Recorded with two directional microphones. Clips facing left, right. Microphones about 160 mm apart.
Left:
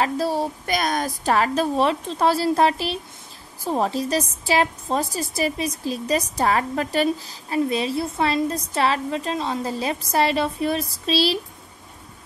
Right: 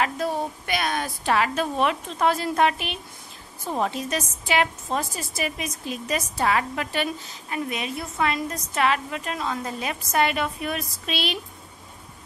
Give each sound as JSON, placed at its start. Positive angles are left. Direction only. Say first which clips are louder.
{"t": 0.0, "sound": "a woman's voice", "louder": "left 3 dB", "side_deg": 35}